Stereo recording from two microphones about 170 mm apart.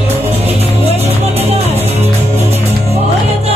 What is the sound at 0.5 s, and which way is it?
Music, 40° right (ahead or behind).